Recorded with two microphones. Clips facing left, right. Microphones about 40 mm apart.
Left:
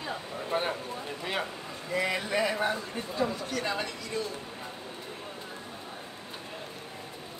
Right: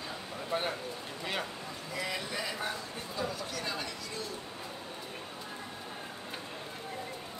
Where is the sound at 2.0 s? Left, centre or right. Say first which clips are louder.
Left 8 dB; left.